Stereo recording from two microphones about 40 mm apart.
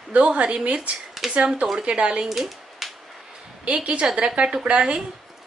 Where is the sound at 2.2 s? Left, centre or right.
Centre.